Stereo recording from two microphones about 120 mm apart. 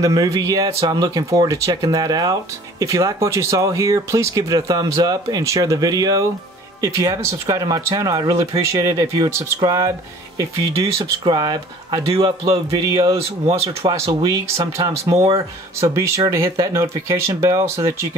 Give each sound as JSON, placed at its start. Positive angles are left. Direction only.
{"t": 0.0, "sound": "speech", "side_deg": -30}
{"t": 12.1, "sound": "speech", "side_deg": -50}